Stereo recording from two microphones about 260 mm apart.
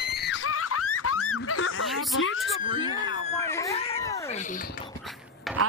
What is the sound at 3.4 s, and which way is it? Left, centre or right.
Screaming, centre.